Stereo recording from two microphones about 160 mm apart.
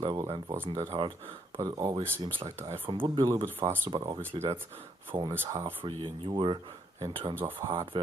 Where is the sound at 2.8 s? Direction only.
35° right (ahead or behind).